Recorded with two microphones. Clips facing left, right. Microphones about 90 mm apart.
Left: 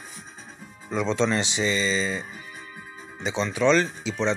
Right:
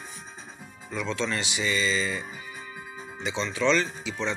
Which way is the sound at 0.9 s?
20° left (ahead or behind).